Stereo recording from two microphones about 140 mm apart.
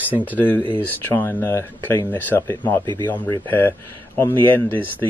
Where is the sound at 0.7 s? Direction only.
15° left (ahead or behind).